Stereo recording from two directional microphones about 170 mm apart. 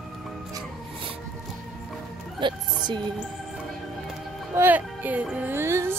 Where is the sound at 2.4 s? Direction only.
30° right (ahead or behind).